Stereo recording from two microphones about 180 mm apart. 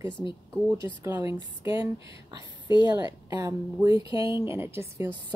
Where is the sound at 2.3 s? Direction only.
25° left (ahead or behind).